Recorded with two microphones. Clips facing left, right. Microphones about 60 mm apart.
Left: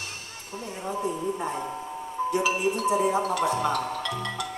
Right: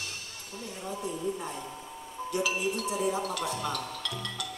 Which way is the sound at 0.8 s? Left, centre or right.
Left.